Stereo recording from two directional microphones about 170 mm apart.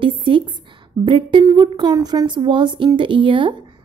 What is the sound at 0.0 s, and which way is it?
A woman's voice, 30° right (ahead or behind).